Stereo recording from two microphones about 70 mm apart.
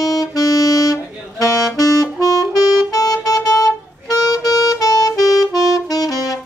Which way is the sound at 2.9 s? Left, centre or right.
Left.